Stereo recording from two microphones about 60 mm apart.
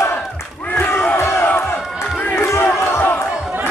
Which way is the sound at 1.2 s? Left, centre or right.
Left.